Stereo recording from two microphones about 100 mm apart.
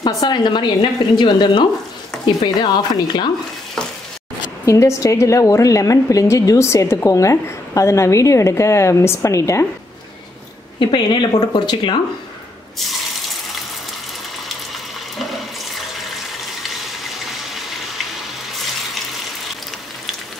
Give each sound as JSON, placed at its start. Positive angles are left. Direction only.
{"t": 0.0, "sound": "speech", "side_deg": 45}
{"t": 4.6, "sound": "a woman's voice", "side_deg": 30}
{"t": 10.8, "sound": "speech", "side_deg": 50}